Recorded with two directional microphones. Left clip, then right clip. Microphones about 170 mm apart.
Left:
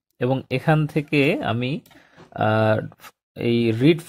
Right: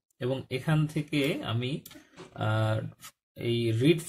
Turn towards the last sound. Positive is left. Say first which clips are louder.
# left 7 dB
turn(degrees=40)  # may be behind; listen again after turning